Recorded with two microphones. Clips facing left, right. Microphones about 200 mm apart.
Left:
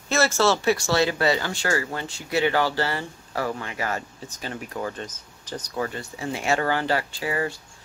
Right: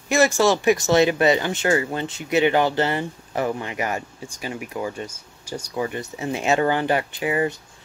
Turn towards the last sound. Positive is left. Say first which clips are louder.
# right 4 dB
turn(degrees=-20)  # may be behind; listen again after turning